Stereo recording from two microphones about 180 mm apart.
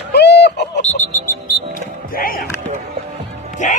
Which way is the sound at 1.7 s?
50° left (ahead or behind).